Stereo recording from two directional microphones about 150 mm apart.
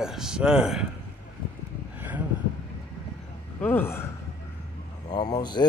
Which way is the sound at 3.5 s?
15° left (ahead or behind).